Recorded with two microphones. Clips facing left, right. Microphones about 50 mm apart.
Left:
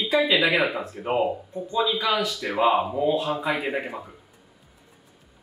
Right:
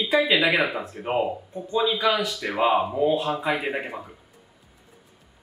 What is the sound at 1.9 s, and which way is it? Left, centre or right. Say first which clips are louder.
Speech: right 1 dB; centre.